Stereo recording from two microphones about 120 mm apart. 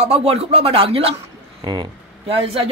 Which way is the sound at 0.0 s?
55° right (ahead or behind).